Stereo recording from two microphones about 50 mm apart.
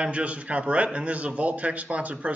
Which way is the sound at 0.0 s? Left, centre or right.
Right.